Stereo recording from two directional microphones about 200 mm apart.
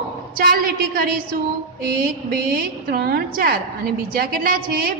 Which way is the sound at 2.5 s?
50° right (ahead or behind).